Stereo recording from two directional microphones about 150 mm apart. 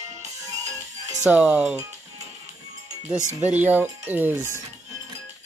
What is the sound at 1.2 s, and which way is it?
Speech, 10° right (ahead or behind).